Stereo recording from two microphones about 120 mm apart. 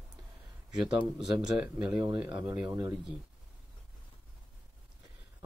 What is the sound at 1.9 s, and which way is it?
Speech, 35° right (ahead or behind).